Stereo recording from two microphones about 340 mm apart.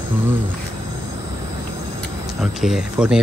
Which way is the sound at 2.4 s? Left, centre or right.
Centre.